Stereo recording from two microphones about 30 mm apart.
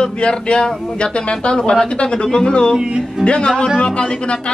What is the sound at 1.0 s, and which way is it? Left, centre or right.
Speech, left.